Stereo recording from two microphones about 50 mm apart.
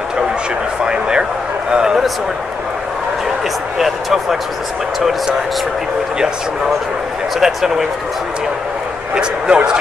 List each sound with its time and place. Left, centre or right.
0.8 s a sound: centre
3.7 s speech: centre
7.3 s speech: centre
9.1 s speech: centre